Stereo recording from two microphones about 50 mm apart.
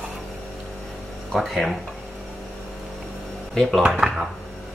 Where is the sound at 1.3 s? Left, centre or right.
Centre.